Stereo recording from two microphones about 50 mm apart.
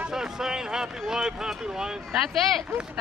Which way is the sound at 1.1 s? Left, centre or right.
Centre.